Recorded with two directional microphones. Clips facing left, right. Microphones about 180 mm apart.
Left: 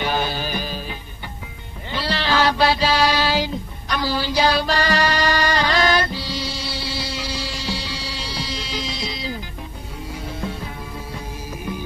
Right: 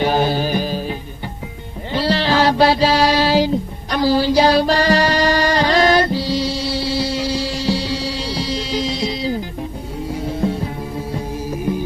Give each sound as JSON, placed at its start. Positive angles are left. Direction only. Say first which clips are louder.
{"t": 0.0, "sound": "music", "louder": "right 7 dB", "side_deg": -35}